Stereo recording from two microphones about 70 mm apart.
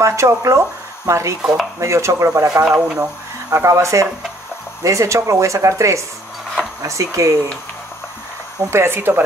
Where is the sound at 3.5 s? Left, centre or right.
Right.